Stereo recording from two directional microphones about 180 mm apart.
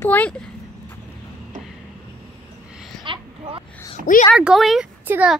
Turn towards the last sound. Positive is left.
turn(degrees=-10)  # may be behind; listen again after turning